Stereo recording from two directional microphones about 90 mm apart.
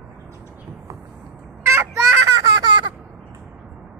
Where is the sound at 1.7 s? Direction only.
30° right (ahead or behind).